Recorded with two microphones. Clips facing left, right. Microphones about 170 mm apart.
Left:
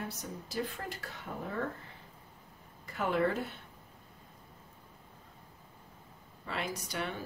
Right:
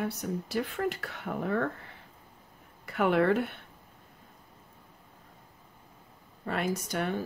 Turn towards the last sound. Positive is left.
turn(degrees=-50)  # may be behind; listen again after turning